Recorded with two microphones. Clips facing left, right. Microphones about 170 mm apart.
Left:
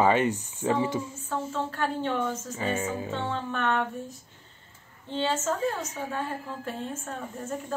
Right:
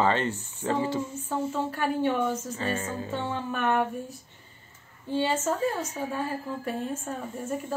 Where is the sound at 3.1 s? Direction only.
10° right (ahead or behind).